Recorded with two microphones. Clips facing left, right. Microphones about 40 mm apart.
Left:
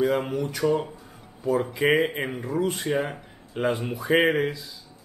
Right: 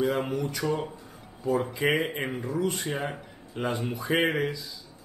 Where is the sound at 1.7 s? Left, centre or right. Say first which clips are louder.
Left 4 dB; left.